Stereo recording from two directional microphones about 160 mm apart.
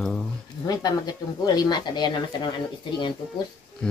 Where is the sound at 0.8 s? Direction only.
25° left (ahead or behind).